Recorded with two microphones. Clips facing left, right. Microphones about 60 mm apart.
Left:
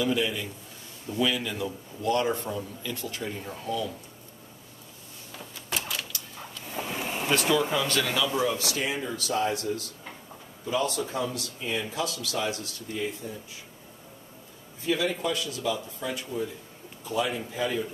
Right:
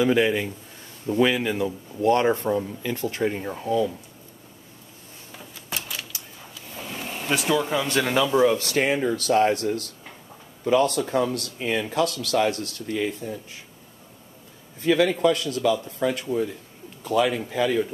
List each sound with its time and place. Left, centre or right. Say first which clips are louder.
0.0 s speech: right 7 dB; right
3.4 s speech: right 6 dB; right
5.3 s a sound: even; centre
6.7 s vehicle: left 2 dB; centre
7.2 s speech: right 2 dB; centre
7.7 s speech: right 4 dB; right
14.8 s speech: right 8 dB; right